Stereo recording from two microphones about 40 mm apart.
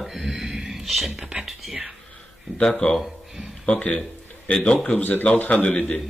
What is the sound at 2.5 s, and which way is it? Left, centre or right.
Speech, left.